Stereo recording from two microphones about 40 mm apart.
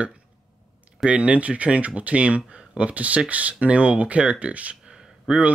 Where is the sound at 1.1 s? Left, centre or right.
Right.